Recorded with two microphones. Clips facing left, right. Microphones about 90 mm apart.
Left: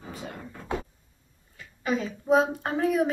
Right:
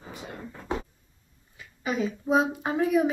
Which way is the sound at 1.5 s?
15° right (ahead or behind).